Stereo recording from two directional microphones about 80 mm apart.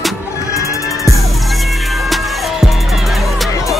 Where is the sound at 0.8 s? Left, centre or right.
Left.